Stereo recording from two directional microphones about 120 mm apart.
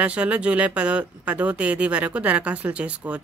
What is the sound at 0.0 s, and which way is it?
Speech, 10° right (ahead or behind).